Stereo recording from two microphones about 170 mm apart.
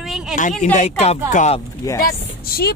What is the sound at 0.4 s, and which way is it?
Speech, 50° left (ahead or behind).